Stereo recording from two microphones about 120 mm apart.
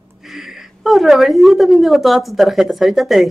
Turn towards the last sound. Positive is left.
turn(degrees=0)  # may be behind; listen again after turning